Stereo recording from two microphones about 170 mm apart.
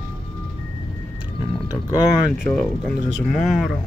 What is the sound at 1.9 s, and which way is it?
Speech, 20° left (ahead or behind).